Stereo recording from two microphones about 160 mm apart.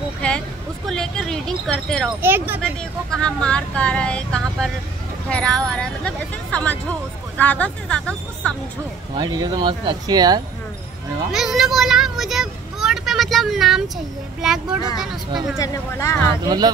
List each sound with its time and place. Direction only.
0.2 s a sound: 5° left (ahead or behind)
2.2 s speech: 10° right (ahead or behind)
3.1 s speech: 5° left (ahead or behind)
9.1 s speech: 25° right (ahead or behind)
11.3 s speech: centre (ahead or behind)
15.5 s speech: 20° left (ahead or behind)
16.4 s speech: 25° right (ahead or behind)